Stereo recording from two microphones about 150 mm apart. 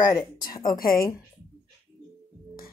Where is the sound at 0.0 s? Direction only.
25° left (ahead or behind).